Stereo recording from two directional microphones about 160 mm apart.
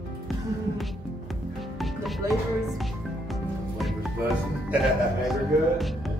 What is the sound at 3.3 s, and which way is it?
Music, centre (ahead or behind).